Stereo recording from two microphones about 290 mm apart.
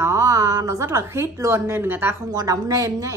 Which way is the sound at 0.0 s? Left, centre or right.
Centre.